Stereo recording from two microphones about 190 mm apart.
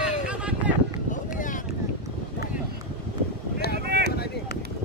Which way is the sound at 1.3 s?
45° left (ahead or behind).